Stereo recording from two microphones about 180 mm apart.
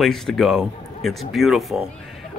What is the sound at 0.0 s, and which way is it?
Speech, centre (ahead or behind).